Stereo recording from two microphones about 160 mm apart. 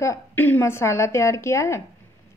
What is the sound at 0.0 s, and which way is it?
A woman's voice, 15° left (ahead or behind).